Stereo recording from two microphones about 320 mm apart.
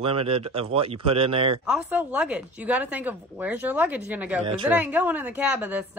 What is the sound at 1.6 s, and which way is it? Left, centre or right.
Speech, centre.